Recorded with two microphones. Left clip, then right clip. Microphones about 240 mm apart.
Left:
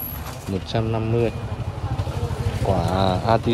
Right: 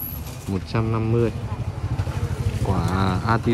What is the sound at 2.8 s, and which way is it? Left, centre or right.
Speech, left.